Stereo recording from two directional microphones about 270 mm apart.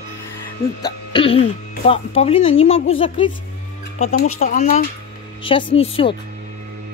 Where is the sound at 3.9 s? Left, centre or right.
Left.